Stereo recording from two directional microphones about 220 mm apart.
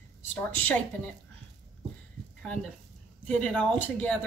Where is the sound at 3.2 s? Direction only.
5° left (ahead or behind).